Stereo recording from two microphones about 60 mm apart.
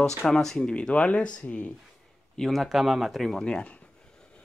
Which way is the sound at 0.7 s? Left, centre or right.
Centre.